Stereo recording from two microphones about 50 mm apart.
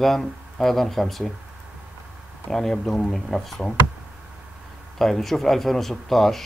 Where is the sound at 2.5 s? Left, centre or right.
Centre.